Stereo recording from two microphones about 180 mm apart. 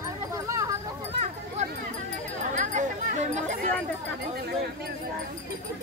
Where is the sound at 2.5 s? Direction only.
40° right (ahead or behind).